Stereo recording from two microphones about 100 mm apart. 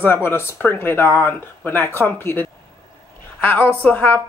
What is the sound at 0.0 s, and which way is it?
Speech, 20° left (ahead or behind).